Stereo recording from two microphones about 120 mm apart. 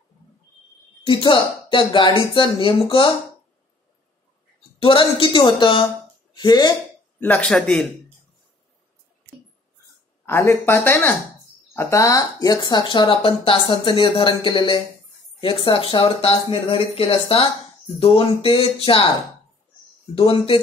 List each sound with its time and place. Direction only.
1.0 s speech: 45° left (ahead or behind)
4.7 s speech: 50° left (ahead or behind)
7.2 s speech: 10° left (ahead or behind)
10.2 s speech: 20° left (ahead or behind); by 19.0 s 50° left (ahead or behind)
20.2 s speech: 45° left (ahead or behind)